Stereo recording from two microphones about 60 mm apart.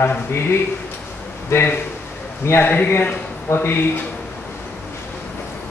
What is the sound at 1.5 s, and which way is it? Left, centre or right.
A man's voice, left.